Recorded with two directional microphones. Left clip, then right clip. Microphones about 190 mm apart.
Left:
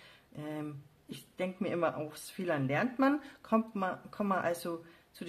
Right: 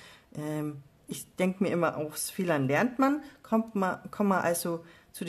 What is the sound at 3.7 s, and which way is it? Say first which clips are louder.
A woman's voice: right 5 dB; 20° right (ahead or behind).